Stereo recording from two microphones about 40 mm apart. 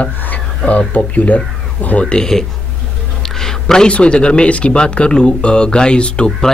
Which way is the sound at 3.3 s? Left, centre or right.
Centre.